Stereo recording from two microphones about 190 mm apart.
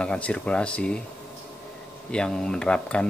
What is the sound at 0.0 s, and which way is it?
Speech, 5° left (ahead or behind).